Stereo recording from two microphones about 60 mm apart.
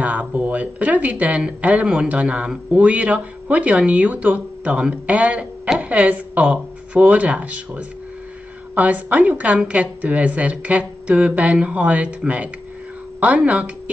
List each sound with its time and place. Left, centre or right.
0.0 s speech: right
13.2 s speech: right